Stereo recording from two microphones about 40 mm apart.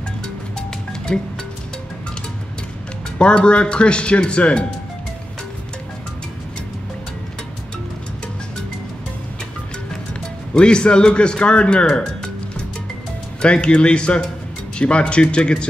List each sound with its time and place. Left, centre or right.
1.1 s speech: centre
3.2 s speech: left
10.5 s speech: left
13.4 s speech: left